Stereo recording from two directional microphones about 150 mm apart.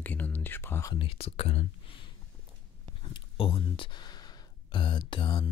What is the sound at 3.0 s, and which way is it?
Speech, 35° left (ahead or behind).